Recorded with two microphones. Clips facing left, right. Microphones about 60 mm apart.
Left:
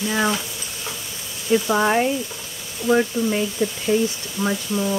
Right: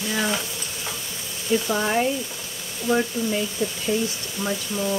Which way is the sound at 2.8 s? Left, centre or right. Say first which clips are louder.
Left 4 dB; left.